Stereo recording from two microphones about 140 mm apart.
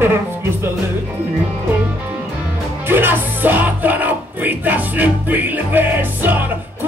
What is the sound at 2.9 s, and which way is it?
Music, 15° right (ahead or behind).